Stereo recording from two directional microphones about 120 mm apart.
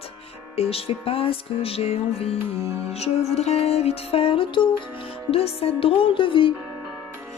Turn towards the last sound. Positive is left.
turn(degrees=45)  # may be behind; listen again after turning